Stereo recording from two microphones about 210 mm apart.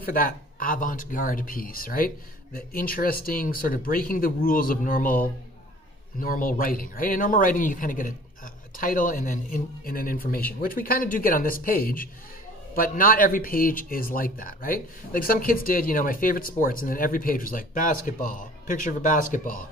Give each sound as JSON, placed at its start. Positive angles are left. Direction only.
{"t": 0.0, "sound": "speech", "side_deg": 45}